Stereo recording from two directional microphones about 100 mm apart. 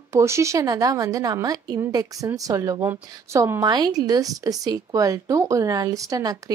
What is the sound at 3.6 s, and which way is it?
Speech, 45° right (ahead or behind).